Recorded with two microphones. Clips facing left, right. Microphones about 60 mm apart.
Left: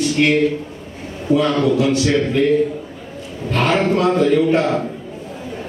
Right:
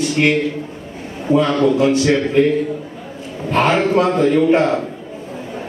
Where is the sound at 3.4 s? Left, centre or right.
Right.